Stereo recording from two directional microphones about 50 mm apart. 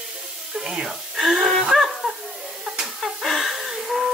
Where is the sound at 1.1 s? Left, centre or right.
Centre.